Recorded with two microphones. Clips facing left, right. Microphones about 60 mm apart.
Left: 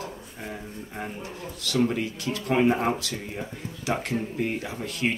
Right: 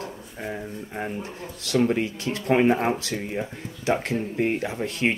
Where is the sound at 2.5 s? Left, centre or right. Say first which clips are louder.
Right 2 dB; right.